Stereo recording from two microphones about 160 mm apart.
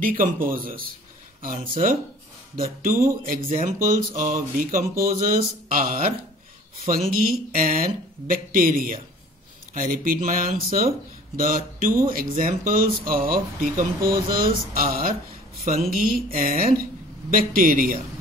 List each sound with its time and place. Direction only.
0.0 s speech: 60° right (ahead or behind)
2.8 s speech: 60° right (ahead or behind)